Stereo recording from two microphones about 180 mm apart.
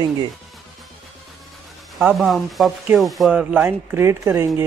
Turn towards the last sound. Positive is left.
turn(degrees=-15)  # may be behind; listen again after turning